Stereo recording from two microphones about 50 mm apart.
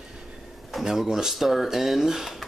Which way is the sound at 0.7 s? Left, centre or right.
Centre.